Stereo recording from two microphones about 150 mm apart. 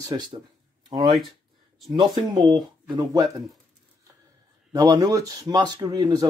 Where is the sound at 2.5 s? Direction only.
25° right (ahead or behind).